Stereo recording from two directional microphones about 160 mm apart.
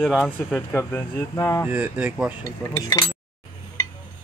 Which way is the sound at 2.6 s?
20° left (ahead or behind).